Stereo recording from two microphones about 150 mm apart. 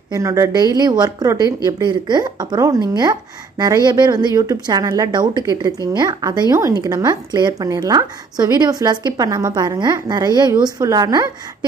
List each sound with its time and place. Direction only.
0.1 s a woman's voice: 20° right (ahead or behind)